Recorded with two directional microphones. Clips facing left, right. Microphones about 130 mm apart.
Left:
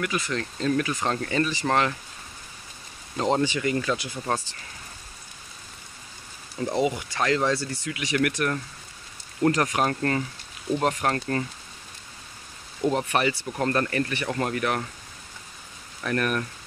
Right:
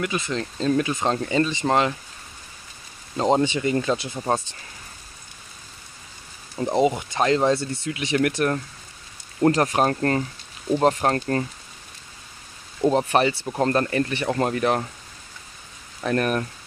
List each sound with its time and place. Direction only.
0.0 s speech: 25° right (ahead or behind)
3.2 s speech: 25° right (ahead or behind)
6.5 s speech: 25° right (ahead or behind)
12.8 s speech: 30° right (ahead or behind)
16.0 s speech: 30° right (ahead or behind)